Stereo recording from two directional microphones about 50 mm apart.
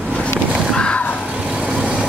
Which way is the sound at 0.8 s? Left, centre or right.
Left.